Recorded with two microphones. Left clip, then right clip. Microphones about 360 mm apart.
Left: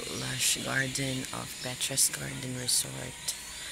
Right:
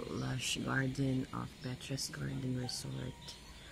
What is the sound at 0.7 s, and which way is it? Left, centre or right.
Speech, centre.